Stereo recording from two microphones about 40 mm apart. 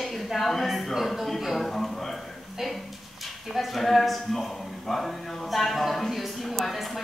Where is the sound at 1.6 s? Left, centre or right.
Centre.